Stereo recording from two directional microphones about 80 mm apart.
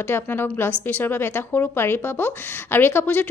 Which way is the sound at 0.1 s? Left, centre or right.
Left.